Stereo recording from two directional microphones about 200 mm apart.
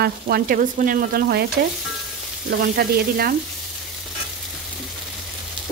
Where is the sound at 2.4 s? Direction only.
55° right (ahead or behind).